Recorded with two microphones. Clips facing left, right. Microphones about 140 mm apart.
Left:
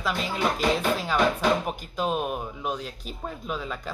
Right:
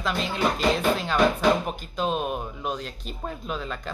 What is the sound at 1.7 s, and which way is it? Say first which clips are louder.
Speech: even; 10° left (ahead or behind).